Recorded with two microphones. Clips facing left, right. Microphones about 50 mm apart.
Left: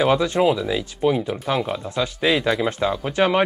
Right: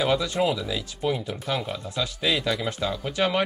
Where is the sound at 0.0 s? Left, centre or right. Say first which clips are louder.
Left 5 dB; left.